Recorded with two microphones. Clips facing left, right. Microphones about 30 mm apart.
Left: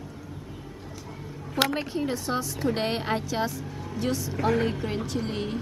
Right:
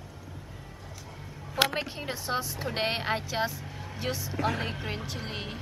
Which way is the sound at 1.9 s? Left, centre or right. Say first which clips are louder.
Left 4 dB; centre.